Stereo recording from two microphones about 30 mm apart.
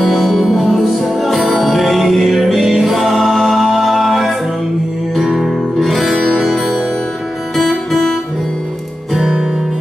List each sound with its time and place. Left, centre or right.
0.0 s music: centre
5.2 s music: centre
5.5 s music: centre
7.5 s music: centre
9.2 s music: right